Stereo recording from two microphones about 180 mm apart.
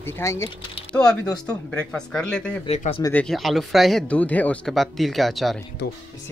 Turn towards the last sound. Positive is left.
turn(degrees=0)  # may be behind; listen again after turning